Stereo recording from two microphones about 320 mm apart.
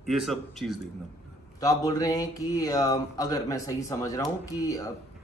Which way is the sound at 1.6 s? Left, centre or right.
Centre.